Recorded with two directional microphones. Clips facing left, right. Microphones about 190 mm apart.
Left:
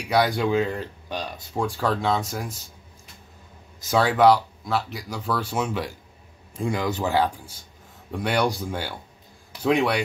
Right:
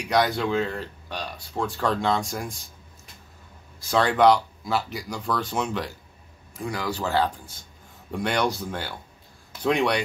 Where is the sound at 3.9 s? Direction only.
5° left (ahead or behind).